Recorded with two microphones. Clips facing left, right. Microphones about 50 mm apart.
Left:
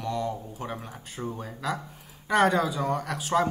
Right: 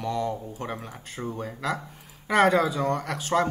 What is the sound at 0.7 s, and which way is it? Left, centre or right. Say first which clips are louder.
Speech: right 1 dB; centre.